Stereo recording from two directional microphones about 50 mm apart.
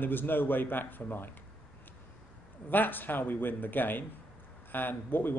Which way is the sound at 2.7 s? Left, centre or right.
Left.